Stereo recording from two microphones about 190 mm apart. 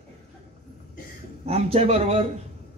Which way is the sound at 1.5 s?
30° right (ahead or behind).